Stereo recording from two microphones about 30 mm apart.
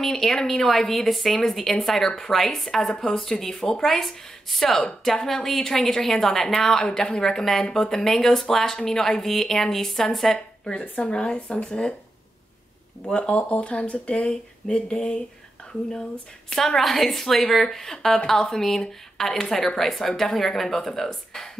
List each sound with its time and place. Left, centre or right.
0.0 s a woman's voice: centre
3.8 s a woman's voice: centre
11.1 s speech: left
13.3 s speech: left
14.7 s speech: left
16.5 s a woman's voice: centre